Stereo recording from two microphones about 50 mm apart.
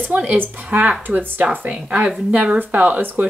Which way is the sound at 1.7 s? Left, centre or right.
Right.